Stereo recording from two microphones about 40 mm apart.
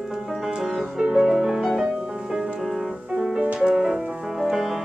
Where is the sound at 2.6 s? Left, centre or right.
Centre.